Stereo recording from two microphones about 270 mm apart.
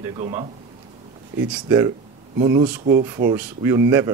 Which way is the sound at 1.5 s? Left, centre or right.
Centre.